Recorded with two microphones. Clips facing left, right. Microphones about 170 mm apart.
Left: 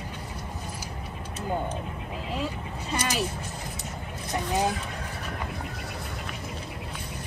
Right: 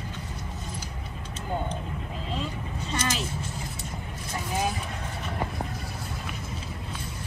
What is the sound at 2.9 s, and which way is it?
Speech, 10° left (ahead or behind).